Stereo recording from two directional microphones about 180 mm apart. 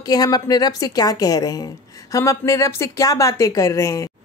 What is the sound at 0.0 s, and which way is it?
A woman's voice, 20° left (ahead or behind).